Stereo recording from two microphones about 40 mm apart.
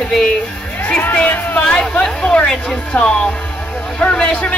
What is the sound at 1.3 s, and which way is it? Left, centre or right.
Speech, left.